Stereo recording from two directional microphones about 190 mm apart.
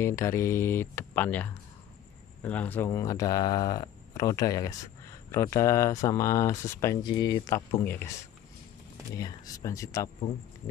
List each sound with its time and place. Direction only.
0.0 s speech: 15° left (ahead or behind)
9.1 s speech: 20° left (ahead or behind)